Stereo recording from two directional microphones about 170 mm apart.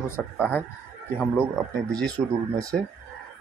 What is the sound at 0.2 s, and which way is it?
Speech, 5° left (ahead or behind).